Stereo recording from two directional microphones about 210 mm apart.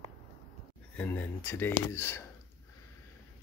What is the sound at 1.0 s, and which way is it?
Speech, 10° left (ahead or behind).